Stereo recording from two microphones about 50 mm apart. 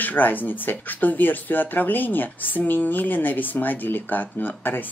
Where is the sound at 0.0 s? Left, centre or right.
Left.